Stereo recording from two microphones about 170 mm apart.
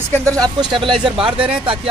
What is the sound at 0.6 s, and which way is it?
Speech, 30° right (ahead or behind).